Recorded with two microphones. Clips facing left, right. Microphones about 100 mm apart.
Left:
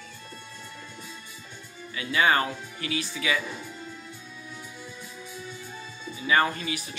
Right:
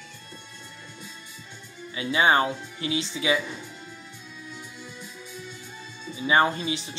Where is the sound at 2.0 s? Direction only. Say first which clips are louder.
Right 2 dB; 25° right (ahead or behind).